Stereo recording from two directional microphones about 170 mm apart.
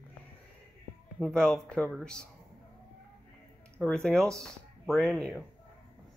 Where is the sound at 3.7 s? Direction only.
5° left (ahead or behind).